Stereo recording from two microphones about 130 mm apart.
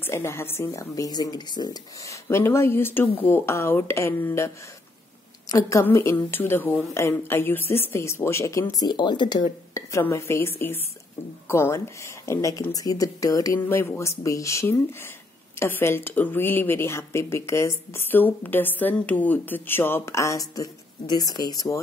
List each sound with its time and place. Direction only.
0.0 s a woman's voice: 20° left (ahead or behind)
5.5 s a woman's voice: 25° left (ahead or behind)
9.8 s a woman's voice: 20° left (ahead or behind)